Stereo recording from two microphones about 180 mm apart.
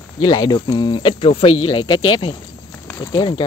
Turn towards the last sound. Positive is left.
turn(degrees=25)  # may be behind; listen again after turning